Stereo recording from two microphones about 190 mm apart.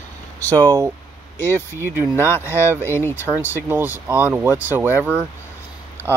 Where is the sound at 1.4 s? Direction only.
10° left (ahead or behind).